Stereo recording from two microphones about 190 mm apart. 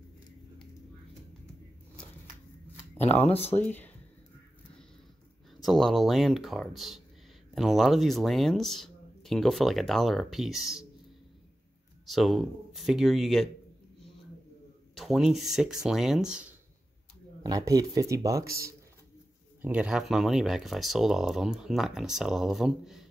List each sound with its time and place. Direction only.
3.0 s speech: 35° left (ahead or behind)
3.5 s speech: 10° left (ahead or behind)
5.6 s speech: centre (ahead or behind)
12.1 s speech: centre (ahead or behind)
15.0 s speech: centre (ahead or behind)
17.4 s speech: 20° right (ahead or behind)
19.6 s speech: 5° right (ahead or behind)